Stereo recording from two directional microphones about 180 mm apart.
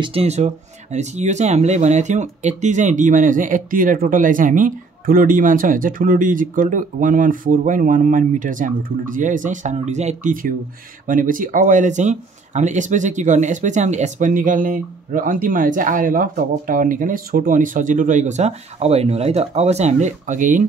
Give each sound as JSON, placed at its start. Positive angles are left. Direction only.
{"t": 0.0, "sound": "speech", "side_deg": -35}